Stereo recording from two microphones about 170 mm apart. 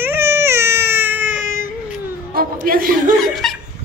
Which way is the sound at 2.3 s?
60° right (ahead or behind).